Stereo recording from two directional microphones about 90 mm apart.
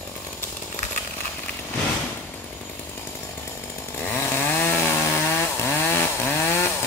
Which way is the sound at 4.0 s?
25° left (ahead or behind).